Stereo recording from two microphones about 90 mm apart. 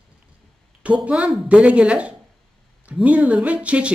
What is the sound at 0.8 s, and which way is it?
Speech, 15° right (ahead or behind).